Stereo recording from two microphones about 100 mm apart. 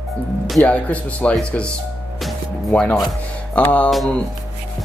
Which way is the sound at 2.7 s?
10° left (ahead or behind).